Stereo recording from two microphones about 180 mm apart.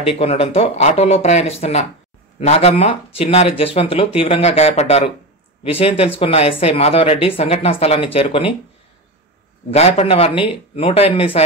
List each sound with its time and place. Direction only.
0.0 s speech: 30° left (ahead or behind)
9.8 s speech: 35° left (ahead or behind)